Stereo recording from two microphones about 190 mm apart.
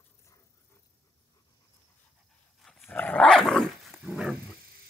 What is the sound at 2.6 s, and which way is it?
Dog, 5° left (ahead or behind).